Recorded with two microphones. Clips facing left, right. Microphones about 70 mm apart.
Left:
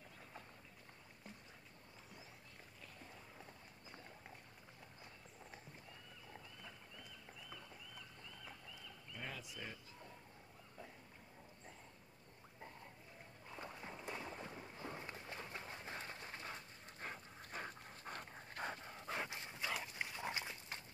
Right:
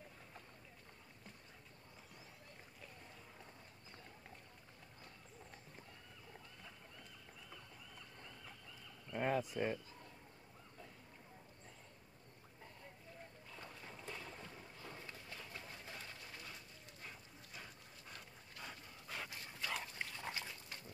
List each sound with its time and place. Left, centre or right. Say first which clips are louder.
9.1 s fowl: right 13 dB; right
13.5 s boat: left 6 dB; left
19.7 s dog: even; centre